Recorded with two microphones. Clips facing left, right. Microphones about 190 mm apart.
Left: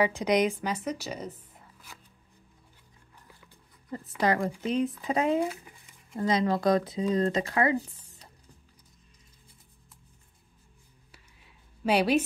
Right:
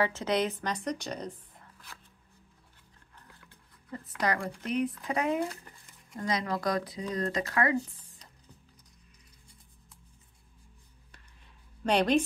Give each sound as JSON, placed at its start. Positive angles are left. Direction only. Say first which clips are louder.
{"t": 0.0, "sound": "a woman's voice", "louder": "left 4 dB", "side_deg": 15}
{"t": 4.2, "sound": "speech", "louder": "left 5 dB", "side_deg": 25}
{"t": 5.4, "sound": "a sound", "louder": "left 3 dB", "side_deg": 5}
{"t": 6.1, "sound": "speech", "louder": "left 6 dB", "side_deg": 25}
{"t": 11.8, "sound": "a woman's voice", "louder": "left 1 dB", "side_deg": 5}